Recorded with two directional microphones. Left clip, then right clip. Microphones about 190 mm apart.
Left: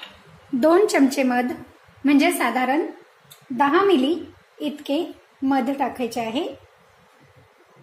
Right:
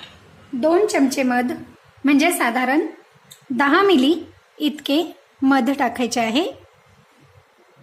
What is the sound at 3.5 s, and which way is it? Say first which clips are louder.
A woman's voice: right 2 dB; 25° right (ahead or behind).